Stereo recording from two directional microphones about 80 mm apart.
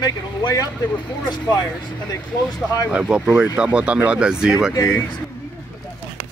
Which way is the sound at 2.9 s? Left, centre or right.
Centre.